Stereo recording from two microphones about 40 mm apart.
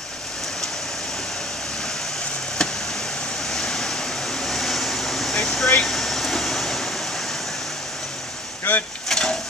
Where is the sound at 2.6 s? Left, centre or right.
Centre.